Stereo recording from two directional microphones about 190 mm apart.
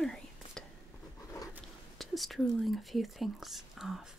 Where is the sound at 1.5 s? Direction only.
Centre (ahead or behind).